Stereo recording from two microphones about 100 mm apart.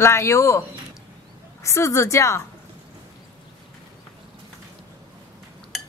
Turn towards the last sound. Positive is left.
turn(degrees=0)  # may be behind; listen again after turning